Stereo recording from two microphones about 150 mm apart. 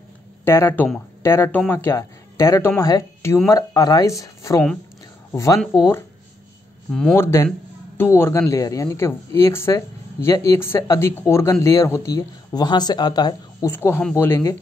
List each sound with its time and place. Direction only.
0.5 s speech: 15° left (ahead or behind)
6.9 s speech: 5° left (ahead or behind)
7.2 s speech: 15° left (ahead or behind)
13.7 s speech: 15° left (ahead or behind)